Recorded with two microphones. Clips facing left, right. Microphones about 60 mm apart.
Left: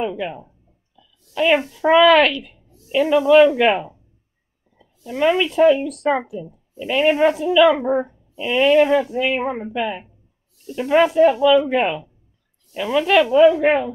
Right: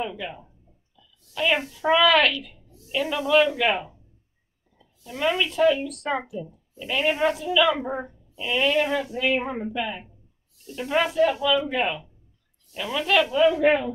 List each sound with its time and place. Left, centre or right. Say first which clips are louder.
0.0 s speech: left 7 dB; left
1.0 s oink: left 5 dB; left
1.3 s speech: left 7 dB; left
5.0 s speech: left 7 dB; left